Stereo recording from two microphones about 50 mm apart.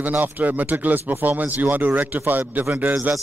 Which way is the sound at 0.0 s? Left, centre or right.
Right.